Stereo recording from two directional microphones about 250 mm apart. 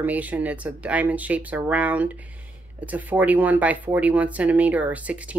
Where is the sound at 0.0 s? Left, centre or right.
Centre.